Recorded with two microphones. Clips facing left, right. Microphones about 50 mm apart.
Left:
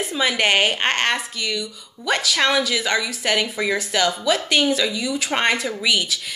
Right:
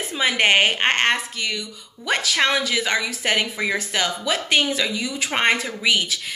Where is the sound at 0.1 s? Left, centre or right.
Right.